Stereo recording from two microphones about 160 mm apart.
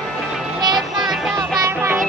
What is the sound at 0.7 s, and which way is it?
Music, centre (ahead or behind).